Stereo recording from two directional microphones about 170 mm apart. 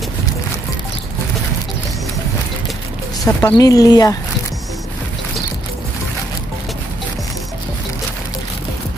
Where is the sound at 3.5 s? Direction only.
20° left (ahead or behind).